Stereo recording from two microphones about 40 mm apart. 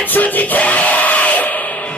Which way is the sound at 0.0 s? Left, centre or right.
Left.